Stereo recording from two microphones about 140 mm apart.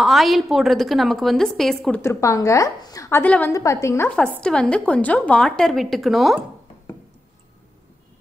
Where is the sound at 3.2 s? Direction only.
10° left (ahead or behind).